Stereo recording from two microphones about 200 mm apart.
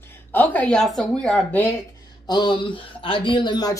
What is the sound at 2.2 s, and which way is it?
Speech, 20° left (ahead or behind).